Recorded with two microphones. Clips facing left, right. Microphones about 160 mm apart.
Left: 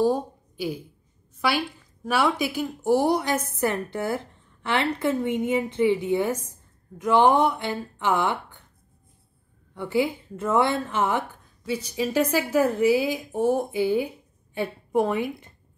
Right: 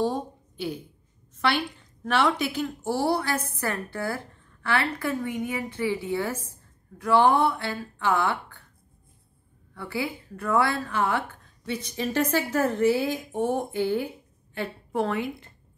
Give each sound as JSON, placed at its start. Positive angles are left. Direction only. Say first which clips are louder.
{"t": 0.0, "sound": "a sound", "louder": "left 4 dB", "side_deg": 10}
{"t": 1.4, "sound": "a woman's voice", "louder": "left 1 dB", "side_deg": 10}
{"t": 9.8, "sound": "a woman's voice", "louder": "left 7 dB", "side_deg": 20}
{"t": 11.6, "sound": "a woman's voice", "louder": "left 3 dB", "side_deg": 10}